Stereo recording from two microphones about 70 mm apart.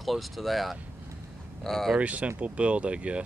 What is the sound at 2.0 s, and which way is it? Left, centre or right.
Speech, centre.